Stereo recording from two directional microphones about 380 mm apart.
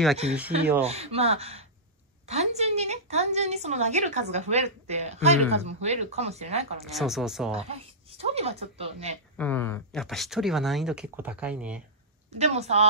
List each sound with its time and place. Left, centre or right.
0.8 s a woman's voice: centre
6.9 s speech: centre
7.5 s speech: centre
9.4 s speech: centre
12.4 s speech: centre